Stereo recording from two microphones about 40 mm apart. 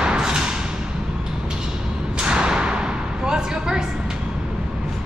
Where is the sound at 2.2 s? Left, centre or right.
Right.